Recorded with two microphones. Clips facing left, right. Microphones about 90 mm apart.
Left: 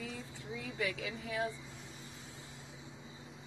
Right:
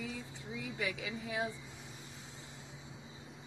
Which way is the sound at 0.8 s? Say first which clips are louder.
Left 1 dB; 20° right (ahead or behind).